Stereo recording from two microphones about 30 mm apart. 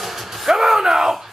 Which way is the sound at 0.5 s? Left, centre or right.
Centre.